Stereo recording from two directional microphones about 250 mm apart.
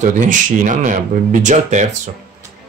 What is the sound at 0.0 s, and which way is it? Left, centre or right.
Speech, right.